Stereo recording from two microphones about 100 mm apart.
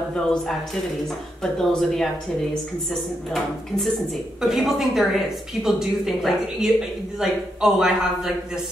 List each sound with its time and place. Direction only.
0.1 s speech: 10° left (ahead or behind)
1.6 s a woman's voice: 5° left (ahead or behind)
3.3 s a woman's voice: 5° left (ahead or behind)